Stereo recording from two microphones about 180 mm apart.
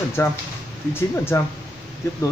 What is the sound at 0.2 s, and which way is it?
Speech, 15° left (ahead or behind).